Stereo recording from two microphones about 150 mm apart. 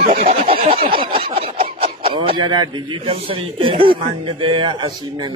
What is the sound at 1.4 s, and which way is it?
Speech, 40° right (ahead or behind).